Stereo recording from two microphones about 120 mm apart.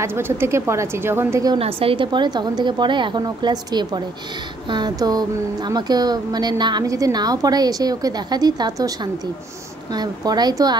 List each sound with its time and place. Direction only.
0.0 s a woman's voice: 20° right (ahead or behind)
1.6 s a woman's voice: 50° right (ahead or behind); by 10.8 s 35° right (ahead or behind)